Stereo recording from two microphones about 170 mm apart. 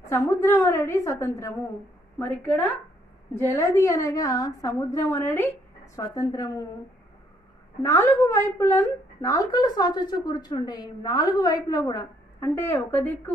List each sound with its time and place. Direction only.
0.0 s a woman's voice: 15° left (ahead or behind)
7.8 s a woman's voice: 15° left (ahead or behind)